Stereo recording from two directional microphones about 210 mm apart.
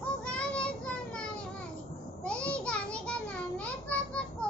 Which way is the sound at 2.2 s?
5° left (ahead or behind).